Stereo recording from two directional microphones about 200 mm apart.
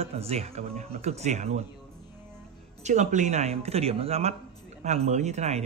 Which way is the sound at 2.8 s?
35° right (ahead or behind).